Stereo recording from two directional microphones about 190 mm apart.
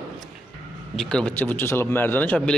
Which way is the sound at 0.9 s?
5° left (ahead or behind).